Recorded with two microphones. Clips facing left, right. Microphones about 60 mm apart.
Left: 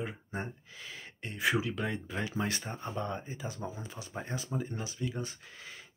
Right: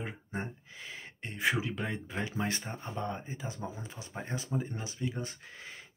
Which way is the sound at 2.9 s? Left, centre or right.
Centre.